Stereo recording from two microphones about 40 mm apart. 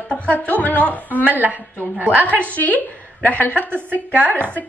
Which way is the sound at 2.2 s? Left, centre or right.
Left.